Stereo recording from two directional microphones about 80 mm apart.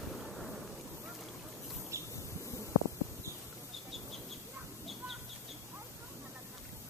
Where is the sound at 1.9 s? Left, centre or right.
Right.